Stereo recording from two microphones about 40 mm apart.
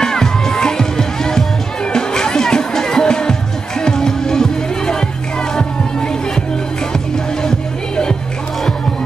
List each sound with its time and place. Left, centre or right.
0.0 s music: centre
7.4 s music: centre